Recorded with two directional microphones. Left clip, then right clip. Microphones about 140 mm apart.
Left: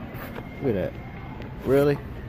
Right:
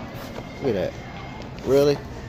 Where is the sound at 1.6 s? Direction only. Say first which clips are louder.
Right 2 dB; 5° left (ahead or behind).